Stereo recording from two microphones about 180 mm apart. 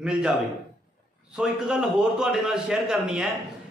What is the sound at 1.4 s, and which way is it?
Speech, 5° right (ahead or behind).